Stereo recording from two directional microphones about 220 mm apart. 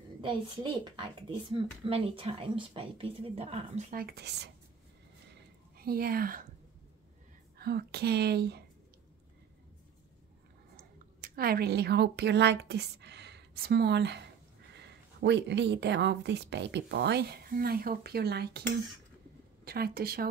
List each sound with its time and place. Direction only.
0.2 s a woman's voice: 20° right (ahead or behind); by 4.5 s 50° right (ahead or behind)
5.3 s a sound: 45° right (ahead or behind)
7.5 s speech: 45° right (ahead or behind)
10.8 s a woman's voice: 45° right (ahead or behind)